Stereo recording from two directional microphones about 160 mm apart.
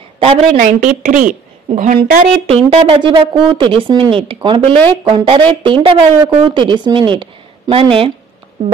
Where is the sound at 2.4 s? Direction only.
40° right (ahead or behind).